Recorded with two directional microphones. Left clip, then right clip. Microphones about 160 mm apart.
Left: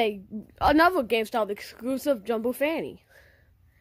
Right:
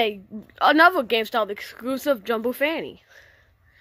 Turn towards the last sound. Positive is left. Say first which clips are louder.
# right 1 dB
turn(degrees=25)  # may be behind; listen again after turning